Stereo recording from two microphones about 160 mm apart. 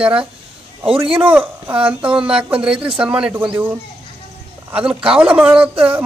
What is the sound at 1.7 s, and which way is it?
Speech, 10° right (ahead or behind).